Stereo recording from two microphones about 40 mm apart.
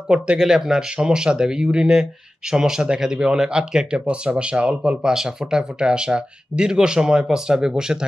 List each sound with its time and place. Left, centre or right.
0.4 s speech: centre
5.1 s speech: centre